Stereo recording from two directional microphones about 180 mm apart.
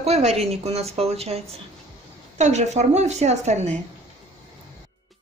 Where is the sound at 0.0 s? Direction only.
35° right (ahead or behind).